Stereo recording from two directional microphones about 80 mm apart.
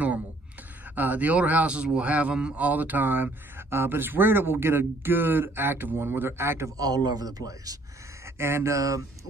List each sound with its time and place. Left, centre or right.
0.9 s a man's voice: right
6.8 s a man's voice: right
8.4 s speech: right